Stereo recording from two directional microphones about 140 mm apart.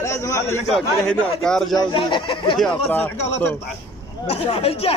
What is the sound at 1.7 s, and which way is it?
Speech, 35° left (ahead or behind).